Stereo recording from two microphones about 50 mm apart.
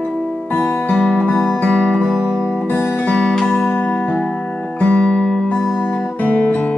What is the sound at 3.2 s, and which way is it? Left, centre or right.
Music, centre.